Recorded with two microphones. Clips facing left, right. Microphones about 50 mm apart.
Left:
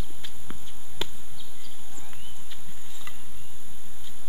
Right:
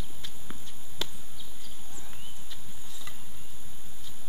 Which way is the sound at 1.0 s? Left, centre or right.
Centre.